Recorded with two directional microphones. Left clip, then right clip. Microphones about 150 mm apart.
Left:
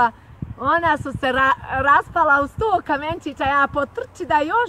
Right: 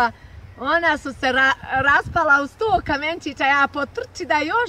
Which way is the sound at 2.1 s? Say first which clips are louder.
Even; 15° right (ahead or behind).